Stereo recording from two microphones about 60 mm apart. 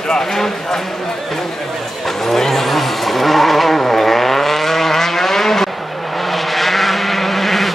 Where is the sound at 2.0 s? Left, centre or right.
Centre.